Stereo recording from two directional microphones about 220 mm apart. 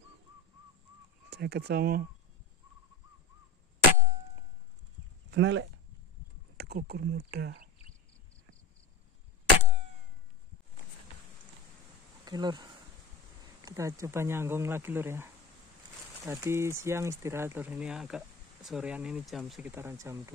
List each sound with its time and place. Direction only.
1.3 s speech: 50° right (ahead or behind)
5.3 s speech: 55° right (ahead or behind)
6.5 s speech: 45° right (ahead or behind)
12.3 s speech: 20° right (ahead or behind)